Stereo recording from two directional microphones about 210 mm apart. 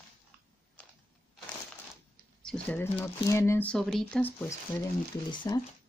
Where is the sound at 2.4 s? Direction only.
5° left (ahead or behind).